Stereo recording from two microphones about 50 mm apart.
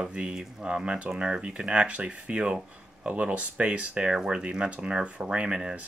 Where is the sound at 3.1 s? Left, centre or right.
Right.